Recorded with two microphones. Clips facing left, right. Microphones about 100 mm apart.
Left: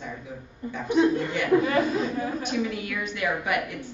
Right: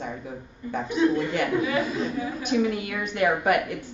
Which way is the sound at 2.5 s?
50° right (ahead or behind).